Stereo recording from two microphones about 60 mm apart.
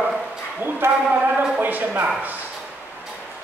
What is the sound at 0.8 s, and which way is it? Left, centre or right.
Speech, right.